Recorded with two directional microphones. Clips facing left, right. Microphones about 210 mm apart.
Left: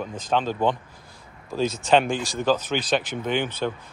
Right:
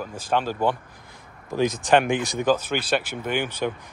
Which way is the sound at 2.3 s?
10° right (ahead or behind).